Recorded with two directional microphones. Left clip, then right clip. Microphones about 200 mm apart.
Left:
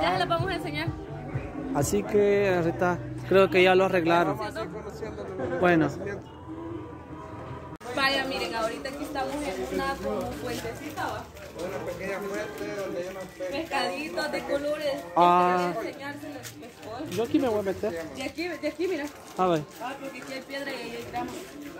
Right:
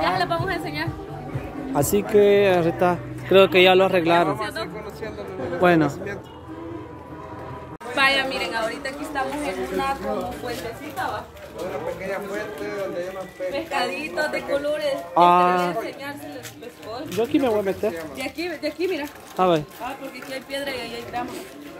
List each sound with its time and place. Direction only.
0.0 s a sound: 5° right (ahead or behind)
1.7 s speech: 15° right (ahead or behind)
7.9 s a woman's voice: 5° right (ahead or behind)
13.5 s speech: 10° right (ahead or behind)
17.1 s speech: 20° right (ahead or behind)
18.2 s speech: 50° right (ahead or behind)
19.3 s speech: 25° right (ahead or behind)
20.5 s speech: 45° right (ahead or behind)